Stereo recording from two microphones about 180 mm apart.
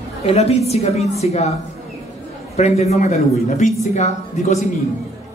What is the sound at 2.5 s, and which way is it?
A woman's voice, 35° left (ahead or behind).